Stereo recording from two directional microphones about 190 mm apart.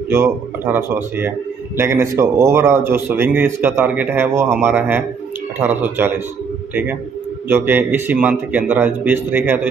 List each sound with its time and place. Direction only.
0.1 s a man's voice: 10° right (ahead or behind)